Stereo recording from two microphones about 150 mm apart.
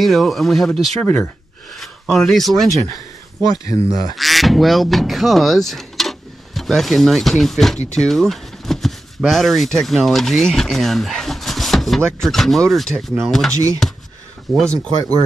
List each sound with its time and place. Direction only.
0.0 s speech: centre (ahead or behind)
1.0 s speech: 10° left (ahead or behind)
3.4 s speech: 25° left (ahead or behind)
4.2 s speech: centre (ahead or behind)
14.7 s speech: 25° right (ahead or behind)